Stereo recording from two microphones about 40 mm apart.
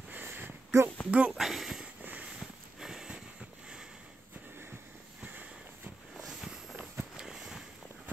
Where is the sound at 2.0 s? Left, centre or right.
Right.